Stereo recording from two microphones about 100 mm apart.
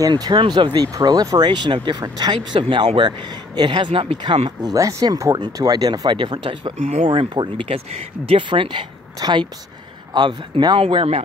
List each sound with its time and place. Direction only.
0.1 s speech: 50° right (ahead or behind)
4.7 s speech: 35° right (ahead or behind)
10.9 s speech: 75° right (ahead or behind)